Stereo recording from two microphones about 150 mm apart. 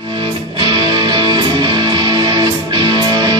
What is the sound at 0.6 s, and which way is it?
Music, 30° right (ahead or behind).